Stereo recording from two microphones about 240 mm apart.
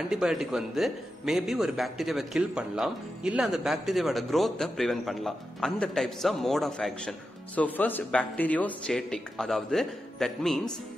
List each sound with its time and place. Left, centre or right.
0.1 s a man's voice: centre